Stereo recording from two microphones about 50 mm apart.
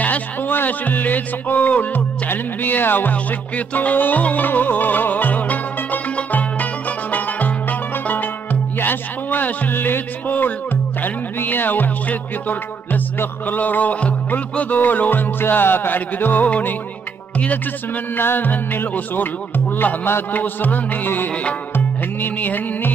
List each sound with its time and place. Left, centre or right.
0.0 s speech: left
8.7 s speech: left
13.5 s music: left
18.1 s music: left